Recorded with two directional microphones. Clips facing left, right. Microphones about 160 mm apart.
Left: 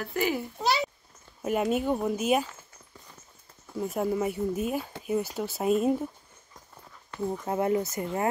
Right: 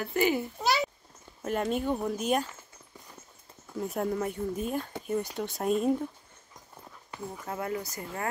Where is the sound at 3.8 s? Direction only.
Centre (ahead or behind).